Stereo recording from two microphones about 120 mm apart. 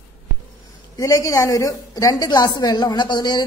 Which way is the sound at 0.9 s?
25° left (ahead or behind).